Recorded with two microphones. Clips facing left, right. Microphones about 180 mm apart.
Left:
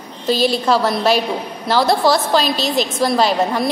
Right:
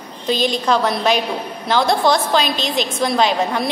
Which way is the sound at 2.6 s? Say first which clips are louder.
Left 3 dB; 45° left (ahead or behind).